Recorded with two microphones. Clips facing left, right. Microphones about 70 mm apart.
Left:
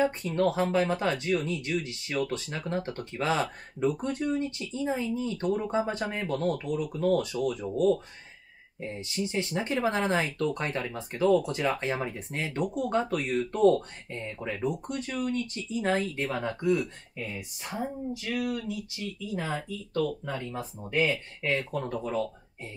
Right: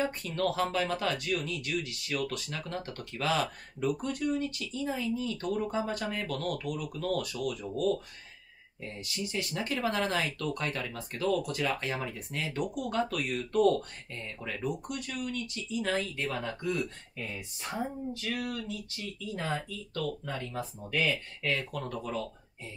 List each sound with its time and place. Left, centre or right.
0.0 s speech: left
18.1 s speech: centre